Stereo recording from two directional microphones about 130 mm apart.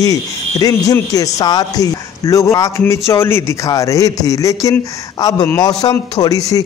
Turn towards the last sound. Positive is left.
turn(degrees=25)  # may be behind; listen again after turning